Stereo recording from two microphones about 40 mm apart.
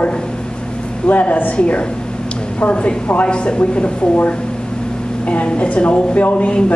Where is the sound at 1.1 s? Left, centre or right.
Left.